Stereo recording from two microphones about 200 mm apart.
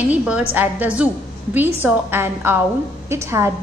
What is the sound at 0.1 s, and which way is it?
A woman's voice, 10° right (ahead or behind).